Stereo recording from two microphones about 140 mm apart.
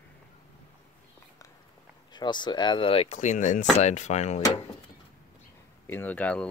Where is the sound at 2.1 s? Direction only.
30° left (ahead or behind); by 4.4 s 55° left (ahead or behind).